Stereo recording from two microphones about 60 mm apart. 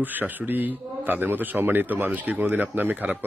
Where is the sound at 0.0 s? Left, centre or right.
Right.